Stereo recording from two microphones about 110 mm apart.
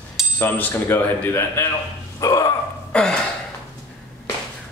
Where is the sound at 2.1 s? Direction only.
30° left (ahead or behind).